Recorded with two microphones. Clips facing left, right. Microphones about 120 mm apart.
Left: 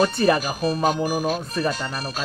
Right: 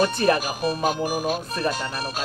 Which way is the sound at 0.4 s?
15° right (ahead or behind).